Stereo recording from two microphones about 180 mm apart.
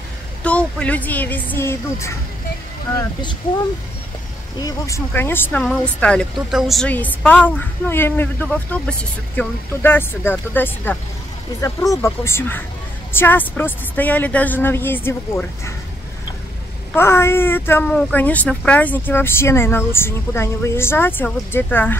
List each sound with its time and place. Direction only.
0.4 s speech: 5° left (ahead or behind)
4.6 s speech: 20° left (ahead or behind)
16.9 s speech: 15° left (ahead or behind)